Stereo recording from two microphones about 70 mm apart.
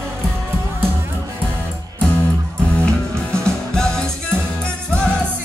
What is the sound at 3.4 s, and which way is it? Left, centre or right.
Music, centre.